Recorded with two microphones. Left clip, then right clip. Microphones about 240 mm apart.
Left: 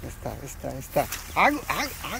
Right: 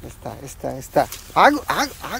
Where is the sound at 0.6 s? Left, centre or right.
Centre.